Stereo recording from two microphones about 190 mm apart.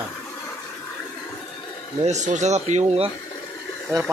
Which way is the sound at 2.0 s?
40° right (ahead or behind).